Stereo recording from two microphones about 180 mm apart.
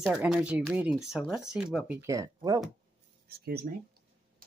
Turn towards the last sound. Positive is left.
turn(degrees=-60)  # may be behind; listen again after turning